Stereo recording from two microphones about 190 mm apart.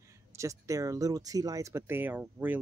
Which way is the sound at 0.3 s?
15° right (ahead or behind).